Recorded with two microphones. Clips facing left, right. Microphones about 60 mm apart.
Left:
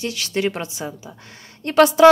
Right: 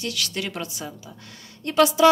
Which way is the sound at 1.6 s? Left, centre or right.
Left.